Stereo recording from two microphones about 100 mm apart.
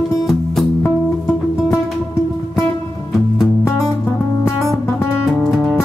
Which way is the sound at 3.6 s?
25° left (ahead or behind).